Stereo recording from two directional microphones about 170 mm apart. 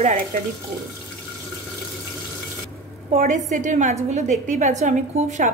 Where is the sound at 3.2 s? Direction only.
50° right (ahead or behind).